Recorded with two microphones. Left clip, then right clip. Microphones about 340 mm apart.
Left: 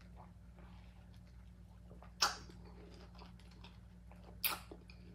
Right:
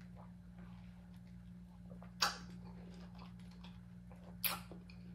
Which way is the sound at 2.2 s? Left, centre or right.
Centre.